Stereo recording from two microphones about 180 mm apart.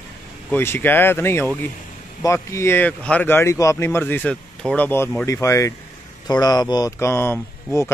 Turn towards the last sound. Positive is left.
turn(degrees=15)  # may be behind; listen again after turning